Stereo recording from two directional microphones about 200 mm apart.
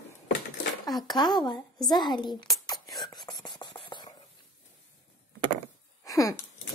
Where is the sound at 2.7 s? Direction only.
Centre (ahead or behind).